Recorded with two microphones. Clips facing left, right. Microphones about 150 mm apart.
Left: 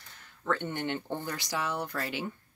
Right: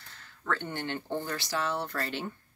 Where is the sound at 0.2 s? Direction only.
20° left (ahead or behind).